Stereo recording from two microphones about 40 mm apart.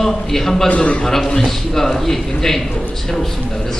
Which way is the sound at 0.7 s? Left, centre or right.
Left.